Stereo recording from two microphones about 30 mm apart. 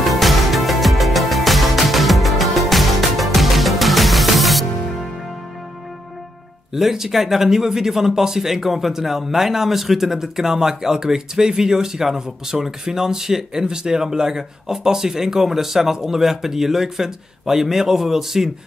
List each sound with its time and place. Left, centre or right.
0.0 s music: centre
6.7 s speech: centre